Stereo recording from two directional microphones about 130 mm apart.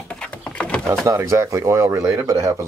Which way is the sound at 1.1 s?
25° right (ahead or behind).